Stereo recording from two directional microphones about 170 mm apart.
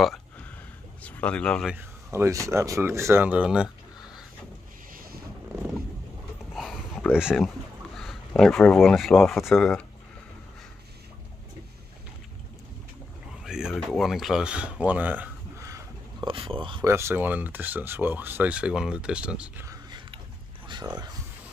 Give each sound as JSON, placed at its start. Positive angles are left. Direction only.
{"t": 1.0, "sound": "speech", "side_deg": 10}
{"t": 1.7, "sound": "speech", "side_deg": -10}
{"t": 6.5, "sound": "a sound", "side_deg": 0}
{"t": 7.2, "sound": "speech", "side_deg": -5}
{"t": 13.4, "sound": "speech", "side_deg": -5}
{"t": 16.3, "sound": "speech", "side_deg": -30}
{"t": 16.8, "sound": "speech", "side_deg": -15}
{"t": 19.6, "sound": "a sound", "side_deg": -20}